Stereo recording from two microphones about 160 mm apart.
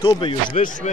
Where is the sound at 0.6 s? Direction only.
55° left (ahead or behind).